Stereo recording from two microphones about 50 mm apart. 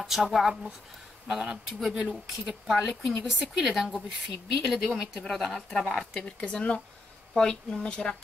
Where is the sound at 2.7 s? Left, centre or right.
Centre.